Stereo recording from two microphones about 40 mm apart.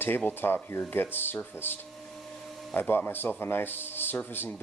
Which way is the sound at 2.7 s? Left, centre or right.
Left.